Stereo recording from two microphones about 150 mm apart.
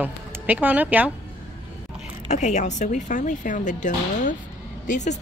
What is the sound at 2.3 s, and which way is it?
Speech, 55° left (ahead or behind).